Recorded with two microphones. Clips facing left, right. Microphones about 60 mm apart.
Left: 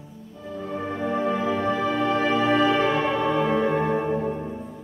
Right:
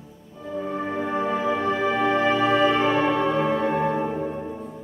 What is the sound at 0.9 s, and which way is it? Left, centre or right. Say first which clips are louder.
Music: left 1 dB; centre.